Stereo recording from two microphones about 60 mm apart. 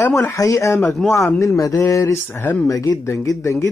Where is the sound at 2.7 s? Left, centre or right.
Left.